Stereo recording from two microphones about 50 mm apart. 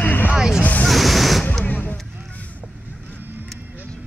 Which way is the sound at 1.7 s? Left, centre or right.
Left.